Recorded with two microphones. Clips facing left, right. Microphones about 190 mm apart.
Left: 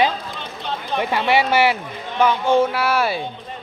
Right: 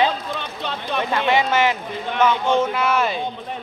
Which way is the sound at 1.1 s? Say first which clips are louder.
Left 1 dB; 10° left (ahead or behind).